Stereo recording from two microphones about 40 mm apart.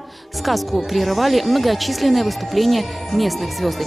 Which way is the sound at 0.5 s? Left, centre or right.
Centre.